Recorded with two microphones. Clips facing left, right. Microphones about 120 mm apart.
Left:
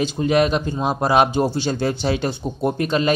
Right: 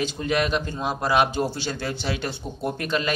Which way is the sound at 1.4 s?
15° left (ahead or behind).